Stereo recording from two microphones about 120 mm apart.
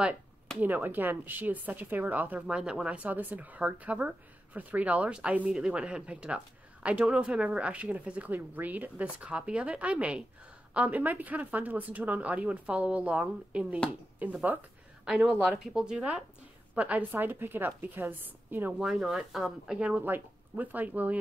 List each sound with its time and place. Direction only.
0.6 s speech: 15° right (ahead or behind)
15.0 s speech: centre (ahead or behind)
18.8 s speech: centre (ahead or behind)